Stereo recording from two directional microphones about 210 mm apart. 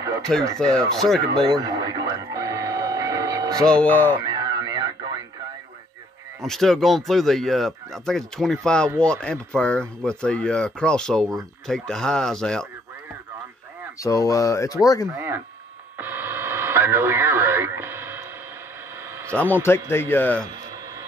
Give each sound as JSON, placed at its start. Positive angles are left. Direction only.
{"t": 0.3, "sound": "speech", "side_deg": 0}
{"t": 1.4, "sound": "radio", "side_deg": -20}
{"t": 3.6, "sound": "speech", "side_deg": 5}
{"t": 4.2, "sound": "radio", "side_deg": -20}
{"t": 6.4, "sound": "speech", "side_deg": 0}
{"t": 13.9, "sound": "speech", "side_deg": 15}
{"t": 15.0, "sound": "speech", "side_deg": -10}
{"t": 16.0, "sound": "radio", "side_deg": -10}
{"t": 19.6, "sound": "speech", "side_deg": 10}